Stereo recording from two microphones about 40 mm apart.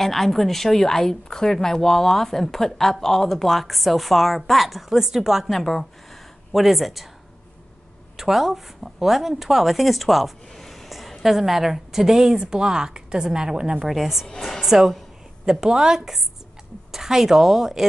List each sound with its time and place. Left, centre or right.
0.0 s a woman's voice: centre
5.5 s speech: centre
6.5 s a woman's voice: centre
8.2 s a woman's voice: centre
13.8 s a woman's voice: centre